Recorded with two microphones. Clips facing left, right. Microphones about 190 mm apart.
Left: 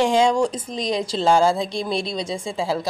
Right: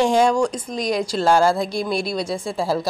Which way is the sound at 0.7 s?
25° left (ahead or behind).